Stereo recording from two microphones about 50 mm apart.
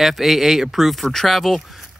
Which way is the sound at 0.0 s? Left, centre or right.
Centre.